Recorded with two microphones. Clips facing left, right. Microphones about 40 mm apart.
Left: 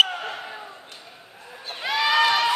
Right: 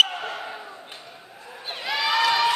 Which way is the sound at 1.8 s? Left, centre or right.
Left.